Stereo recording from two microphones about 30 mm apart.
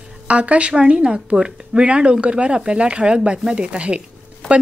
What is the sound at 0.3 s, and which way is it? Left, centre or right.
Speech, right.